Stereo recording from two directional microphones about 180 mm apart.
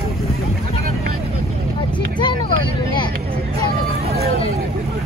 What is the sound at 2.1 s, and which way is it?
Vehicle, 25° left (ahead or behind).